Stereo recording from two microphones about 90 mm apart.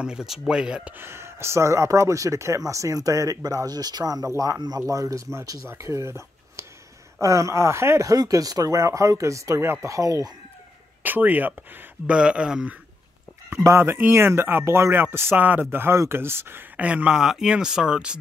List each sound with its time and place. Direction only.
0.0 s speech: 5° right (ahead or behind)
0.9 s speech: 30° right (ahead or behind)
8.1 s speech: 40° right (ahead or behind)
11.0 s speech: 20° right (ahead or behind)
13.6 s speech: 30° right (ahead or behind); by 18.1 s 10° right (ahead or behind)